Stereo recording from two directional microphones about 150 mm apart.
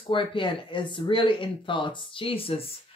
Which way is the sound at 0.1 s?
35° left (ahead or behind).